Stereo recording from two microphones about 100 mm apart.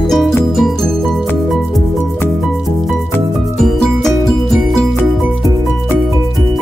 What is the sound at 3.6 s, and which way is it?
Music, centre (ahead or behind).